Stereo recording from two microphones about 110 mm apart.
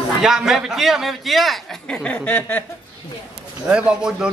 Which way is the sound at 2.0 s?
15° left (ahead or behind).